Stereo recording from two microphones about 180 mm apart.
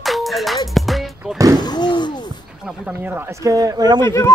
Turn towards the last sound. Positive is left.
turn(degrees=15)  # may be behind; listen again after turning